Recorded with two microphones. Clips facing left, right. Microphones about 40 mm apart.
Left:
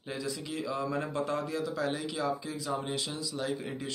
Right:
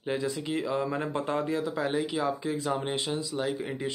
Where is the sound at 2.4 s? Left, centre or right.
Right.